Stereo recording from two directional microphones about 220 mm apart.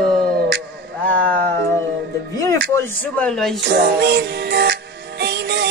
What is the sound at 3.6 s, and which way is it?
Music, 50° right (ahead or behind).